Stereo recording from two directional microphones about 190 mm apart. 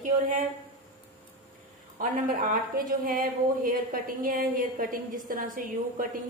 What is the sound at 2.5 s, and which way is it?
A woman's voice, 45° right (ahead or behind).